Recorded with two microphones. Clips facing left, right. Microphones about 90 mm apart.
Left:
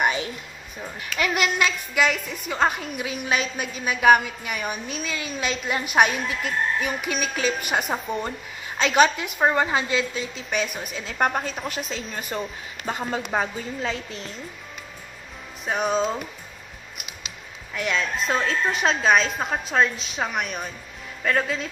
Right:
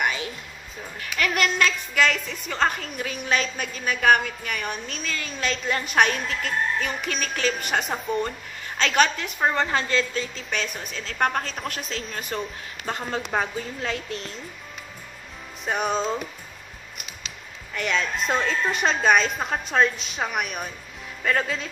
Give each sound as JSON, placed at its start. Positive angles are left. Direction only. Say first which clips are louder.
{"t": 0.0, "sound": "music", "louder": "left 3 dB", "side_deg": 25}
{"t": 1.2, "sound": "a woman's voice", "louder": "even", "side_deg": 5}
{"t": 15.6, "sound": "a woman's voice", "louder": "left 2 dB", "side_deg": 0}
{"t": 17.7, "sound": "a woman's voice", "louder": "even", "side_deg": 0}